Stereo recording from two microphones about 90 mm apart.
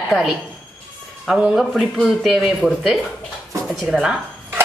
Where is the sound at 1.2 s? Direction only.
5° right (ahead or behind).